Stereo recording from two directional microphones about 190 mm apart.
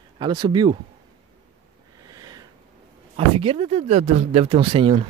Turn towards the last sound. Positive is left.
turn(degrees=-30)  # may be behind; listen again after turning